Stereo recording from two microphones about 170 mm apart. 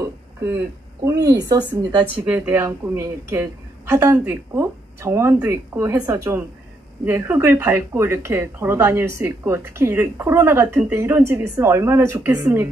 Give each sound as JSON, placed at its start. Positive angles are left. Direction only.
{"t": 0.0, "sound": "a sound", "side_deg": -20}
{"t": 1.0, "sound": "speech", "side_deg": -20}
{"t": 2.2, "sound": "speech", "side_deg": -10}